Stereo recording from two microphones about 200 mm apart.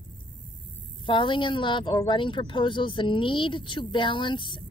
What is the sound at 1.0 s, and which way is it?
Speech, 25° left (ahead or behind).